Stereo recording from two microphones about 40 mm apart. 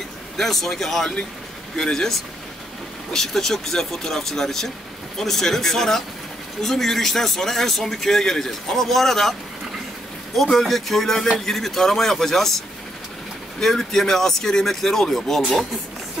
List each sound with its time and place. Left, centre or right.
0.4 s speech: centre
10.3 s speech: centre